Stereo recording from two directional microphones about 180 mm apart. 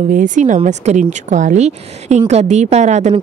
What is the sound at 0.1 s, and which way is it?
A woman's voice, 45° right (ahead or behind).